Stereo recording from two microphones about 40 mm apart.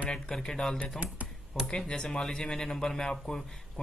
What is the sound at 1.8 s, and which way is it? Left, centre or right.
Speech, centre.